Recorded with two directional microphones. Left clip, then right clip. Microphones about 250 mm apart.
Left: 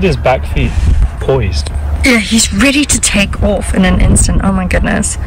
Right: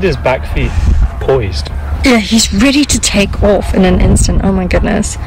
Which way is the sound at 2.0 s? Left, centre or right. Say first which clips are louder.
Even; centre.